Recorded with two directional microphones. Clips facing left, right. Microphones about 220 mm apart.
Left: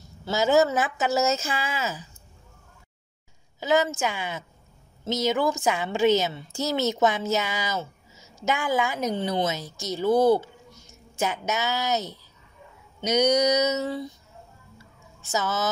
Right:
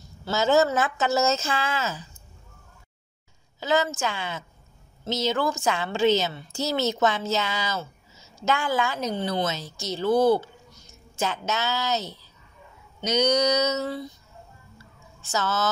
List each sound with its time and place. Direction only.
0.2 s a woman's voice: 15° left (ahead or behind)
3.5 s a woman's voice: 15° left (ahead or behind)
15.3 s a woman's voice: 15° left (ahead or behind)